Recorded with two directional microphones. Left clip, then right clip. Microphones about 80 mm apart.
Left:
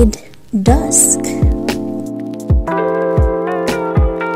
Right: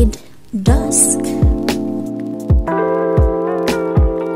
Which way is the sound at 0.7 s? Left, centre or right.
Centre.